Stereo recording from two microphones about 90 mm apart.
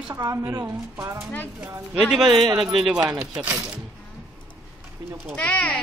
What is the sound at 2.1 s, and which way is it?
A man's voice, centre (ahead or behind).